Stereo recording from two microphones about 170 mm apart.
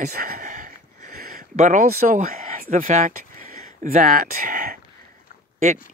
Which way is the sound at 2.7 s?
45° right (ahead or behind).